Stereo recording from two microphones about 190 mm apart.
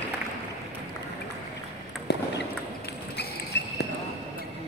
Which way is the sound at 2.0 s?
60° left (ahead or behind).